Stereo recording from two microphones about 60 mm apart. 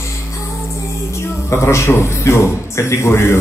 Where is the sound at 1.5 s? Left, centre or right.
Left.